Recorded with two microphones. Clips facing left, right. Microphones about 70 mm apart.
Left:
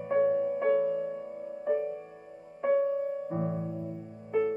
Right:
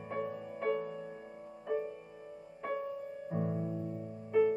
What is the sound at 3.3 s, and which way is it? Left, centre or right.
Music, left.